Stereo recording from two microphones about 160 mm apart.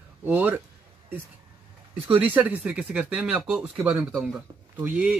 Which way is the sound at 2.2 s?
10° right (ahead or behind).